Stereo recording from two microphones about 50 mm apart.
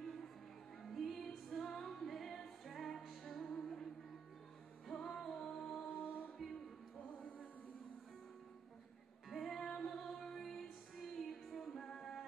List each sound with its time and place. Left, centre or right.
0.0 s music: centre
5.9 s music: left
9.3 s music: centre